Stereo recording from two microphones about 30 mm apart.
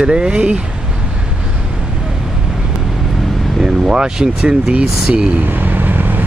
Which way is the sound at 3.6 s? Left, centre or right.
Right.